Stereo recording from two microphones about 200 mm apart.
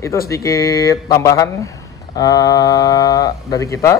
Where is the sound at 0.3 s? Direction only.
15° left (ahead or behind).